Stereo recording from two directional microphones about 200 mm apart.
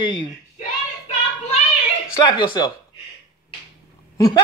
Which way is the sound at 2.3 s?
25° left (ahead or behind).